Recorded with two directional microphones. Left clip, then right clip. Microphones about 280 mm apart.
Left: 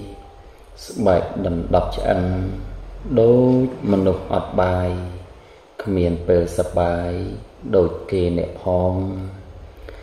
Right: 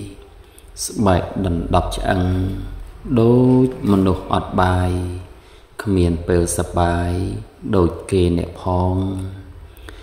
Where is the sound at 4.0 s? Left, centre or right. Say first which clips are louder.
Even; right.